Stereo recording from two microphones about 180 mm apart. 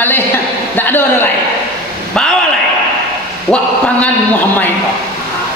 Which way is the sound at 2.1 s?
5° left (ahead or behind).